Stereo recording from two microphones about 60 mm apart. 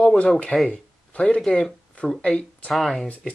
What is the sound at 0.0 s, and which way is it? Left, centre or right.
Speech, centre.